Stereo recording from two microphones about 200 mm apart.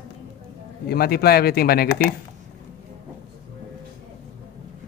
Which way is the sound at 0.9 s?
50° left (ahead or behind).